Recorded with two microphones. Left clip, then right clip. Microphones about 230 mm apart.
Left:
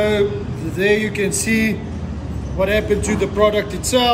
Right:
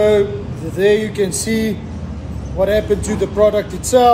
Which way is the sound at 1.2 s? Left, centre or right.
Centre.